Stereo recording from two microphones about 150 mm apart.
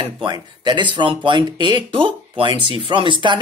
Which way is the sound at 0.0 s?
30° right (ahead or behind).